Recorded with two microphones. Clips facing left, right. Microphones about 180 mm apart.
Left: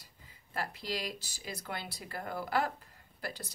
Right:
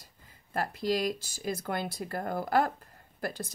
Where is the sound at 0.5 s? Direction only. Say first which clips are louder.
Right 8 dB; 50° right (ahead or behind).